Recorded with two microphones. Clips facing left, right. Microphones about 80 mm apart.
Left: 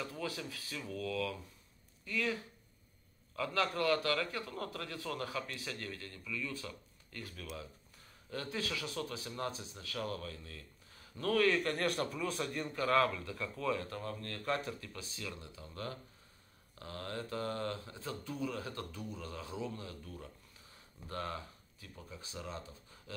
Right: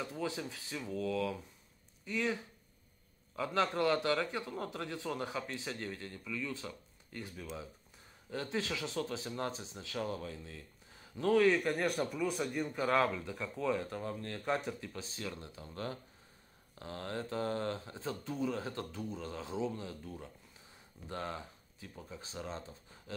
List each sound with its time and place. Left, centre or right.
0.0 s speech: right
12.8 s speech: right